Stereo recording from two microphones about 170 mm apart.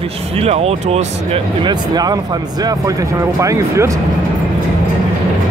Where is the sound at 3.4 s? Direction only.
20° right (ahead or behind).